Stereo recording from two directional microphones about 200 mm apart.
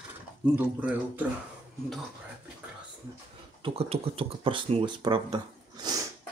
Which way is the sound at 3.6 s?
30° right (ahead or behind).